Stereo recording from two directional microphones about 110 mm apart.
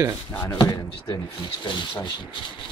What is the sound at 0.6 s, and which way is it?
Speech, 35° left (ahead or behind).